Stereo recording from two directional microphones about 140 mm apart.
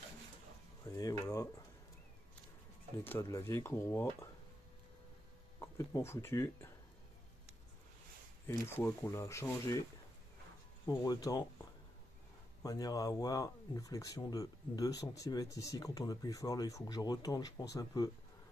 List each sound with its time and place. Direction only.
0.8 s speech: 25° left (ahead or behind)
3.0 s speech: 15° left (ahead or behind)
5.6 s speech: 20° left (ahead or behind)
8.5 s speech: 20° left (ahead or behind)
10.9 s speech: 25° left (ahead or behind)
12.6 s speech: 25° left (ahead or behind)